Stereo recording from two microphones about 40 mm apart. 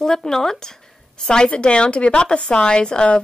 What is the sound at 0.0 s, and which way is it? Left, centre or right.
A woman's voice, centre.